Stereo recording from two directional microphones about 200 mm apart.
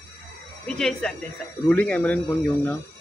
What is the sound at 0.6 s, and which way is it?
Speech, 5° left (ahead or behind).